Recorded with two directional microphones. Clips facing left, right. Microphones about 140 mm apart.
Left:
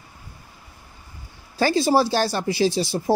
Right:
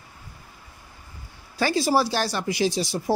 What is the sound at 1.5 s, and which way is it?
Speech, 25° left (ahead or behind).